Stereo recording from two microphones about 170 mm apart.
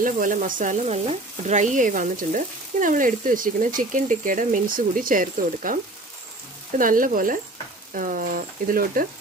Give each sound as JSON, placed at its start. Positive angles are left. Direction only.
{"t": 0.0, "sound": "frying", "side_deg": -50}
{"t": 6.8, "sound": "frying", "side_deg": -55}
{"t": 7.9, "sound": "speech", "side_deg": -55}